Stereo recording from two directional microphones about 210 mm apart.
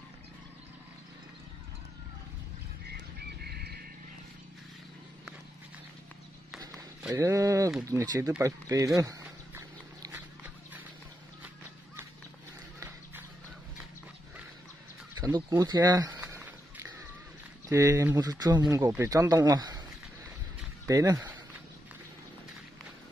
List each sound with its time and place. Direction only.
2.9 s bird: 50° right (ahead or behind)
7.2 s speech: 15° right (ahead or behind)
8.3 s dog: 15° right (ahead or behind)
15.1 s a sound: 15° right (ahead or behind)
17.6 s speech: 15° right (ahead or behind)
20.8 s speech: 15° right (ahead or behind)